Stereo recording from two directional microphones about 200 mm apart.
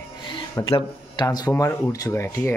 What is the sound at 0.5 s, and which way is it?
Speech, 20° left (ahead or behind).